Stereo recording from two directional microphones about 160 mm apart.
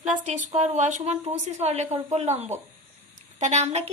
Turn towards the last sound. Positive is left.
turn(degrees=-45)  # may be behind; listen again after turning